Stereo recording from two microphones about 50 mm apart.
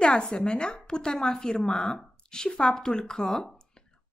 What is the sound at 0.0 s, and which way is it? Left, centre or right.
A woman's voice, left.